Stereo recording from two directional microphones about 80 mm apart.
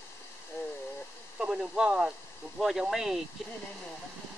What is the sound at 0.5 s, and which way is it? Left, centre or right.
Speech, left.